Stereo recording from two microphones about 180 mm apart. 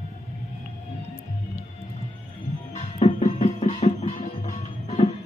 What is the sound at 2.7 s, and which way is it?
Music, 30° left (ahead or behind).